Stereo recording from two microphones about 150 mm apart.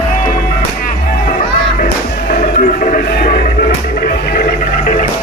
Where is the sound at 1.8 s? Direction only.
60° left (ahead or behind).